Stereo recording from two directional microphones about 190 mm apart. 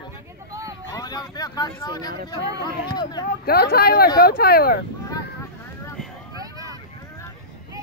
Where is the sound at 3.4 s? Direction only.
55° left (ahead or behind).